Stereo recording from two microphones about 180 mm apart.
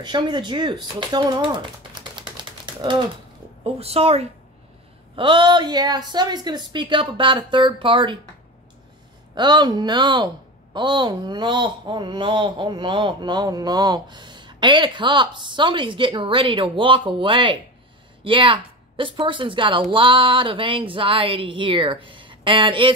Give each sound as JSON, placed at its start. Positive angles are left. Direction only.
{"t": 0.0, "sound": "speech", "side_deg": -25}
{"t": 9.3, "sound": "a woman's voice", "side_deg": -25}